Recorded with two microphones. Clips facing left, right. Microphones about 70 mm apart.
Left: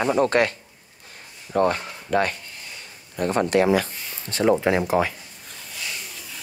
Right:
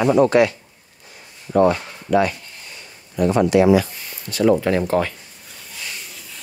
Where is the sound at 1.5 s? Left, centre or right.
Right.